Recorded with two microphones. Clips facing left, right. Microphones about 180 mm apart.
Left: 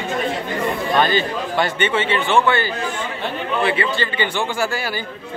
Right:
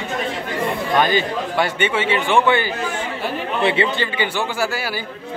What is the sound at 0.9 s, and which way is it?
A man's voice, 10° right (ahead or behind).